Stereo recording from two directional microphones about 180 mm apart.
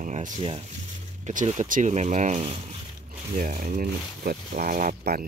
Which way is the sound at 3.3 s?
50° right (ahead or behind).